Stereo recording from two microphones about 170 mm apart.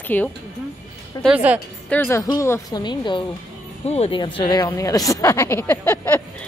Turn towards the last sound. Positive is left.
turn(degrees=10)  # may be behind; listen again after turning